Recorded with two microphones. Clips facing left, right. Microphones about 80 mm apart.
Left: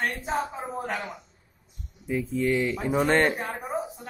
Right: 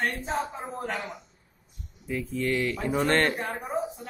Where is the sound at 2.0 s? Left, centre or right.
Centre.